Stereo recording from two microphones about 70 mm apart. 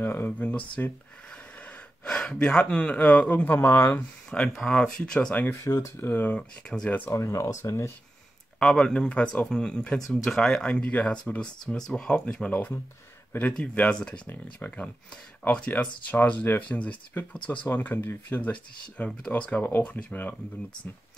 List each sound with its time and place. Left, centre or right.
0.0 s speech: left
2.0 s speech: centre
3.5 s speech: left
4.6 s speech: centre
5.6 s speech: left
5.9 s speech: left
6.3 s speech: centre
7.1 s speech: left
8.5 s speech: centre
9.9 s speech: centre
14.2 s speech: left